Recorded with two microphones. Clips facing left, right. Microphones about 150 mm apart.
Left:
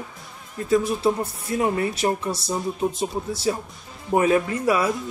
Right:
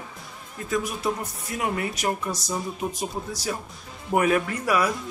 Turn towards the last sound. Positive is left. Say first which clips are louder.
# left 3 dB
turn(degrees=25)  # may be behind; listen again after turning